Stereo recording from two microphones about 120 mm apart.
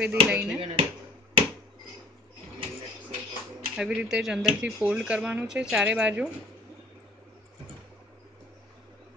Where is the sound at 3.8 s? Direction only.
5° right (ahead or behind).